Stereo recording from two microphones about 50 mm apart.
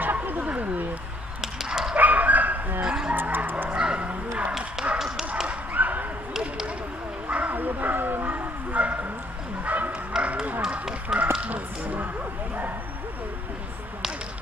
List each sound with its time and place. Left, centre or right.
0.0 s a sound: right
1.4 s dog: centre
2.0 s dog: right
2.8 s dog: centre
3.2 s bow-wow: right
3.7 s bow-wow: right
4.9 s dog: centre
5.5 s dog: right
7.2 s bow-wow: right
10.1 s a sound: centre
11.4 s a sound: right